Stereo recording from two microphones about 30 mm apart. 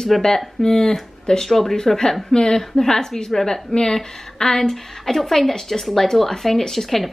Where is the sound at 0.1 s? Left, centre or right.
Centre.